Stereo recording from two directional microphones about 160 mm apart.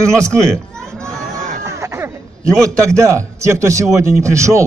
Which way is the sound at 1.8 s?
15° right (ahead or behind).